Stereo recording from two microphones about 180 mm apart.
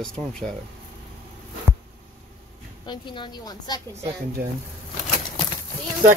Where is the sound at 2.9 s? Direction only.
25° left (ahead or behind).